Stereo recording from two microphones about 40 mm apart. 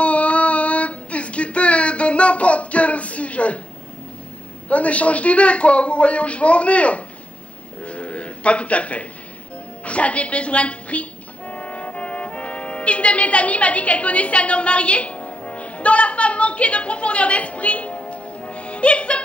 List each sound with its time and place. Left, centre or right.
0.0 s child singing: left
4.6 s a man's voice: left
7.8 s a sound: left
9.8 s speech: left